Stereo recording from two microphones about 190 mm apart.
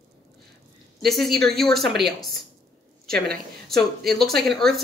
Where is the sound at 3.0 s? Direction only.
55° right (ahead or behind).